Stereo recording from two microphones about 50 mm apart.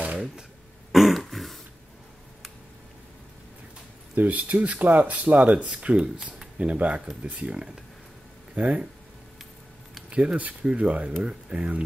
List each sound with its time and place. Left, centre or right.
0.9 s throat clearing: centre
4.1 s speech: right
5.4 s speech: centre
10.0 s speech: right